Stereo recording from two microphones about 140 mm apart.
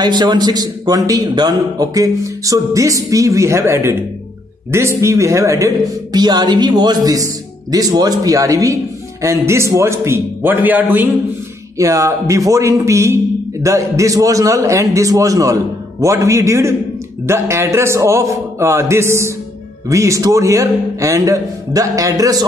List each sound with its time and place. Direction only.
0.0 s a man's voice: 30° right (ahead or behind)